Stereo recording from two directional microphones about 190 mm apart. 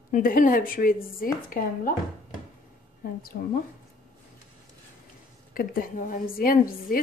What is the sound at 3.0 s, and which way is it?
Speech, 50° left (ahead or behind).